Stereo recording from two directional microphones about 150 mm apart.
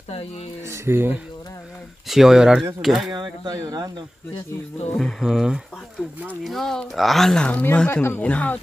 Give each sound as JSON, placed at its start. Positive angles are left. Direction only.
{"t": 0.7, "sound": "speech", "side_deg": -15}
{"t": 2.0, "sound": "speech", "side_deg": 0}
{"t": 3.1, "sound": "speech", "side_deg": -25}
{"t": 4.9, "sound": "speech", "side_deg": 0}